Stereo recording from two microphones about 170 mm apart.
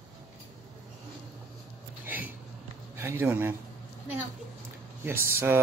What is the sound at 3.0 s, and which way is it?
Speech, 15° right (ahead or behind).